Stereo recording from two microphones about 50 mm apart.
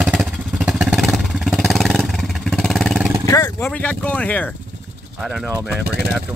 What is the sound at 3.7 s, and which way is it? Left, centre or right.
Speech, left.